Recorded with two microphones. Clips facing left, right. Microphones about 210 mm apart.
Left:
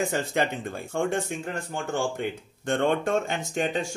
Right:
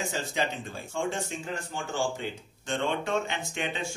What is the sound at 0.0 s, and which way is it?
Speech, 55° left (ahead or behind).